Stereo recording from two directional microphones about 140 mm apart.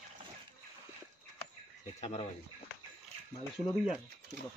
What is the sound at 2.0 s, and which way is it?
Speech, 50° left (ahead or behind).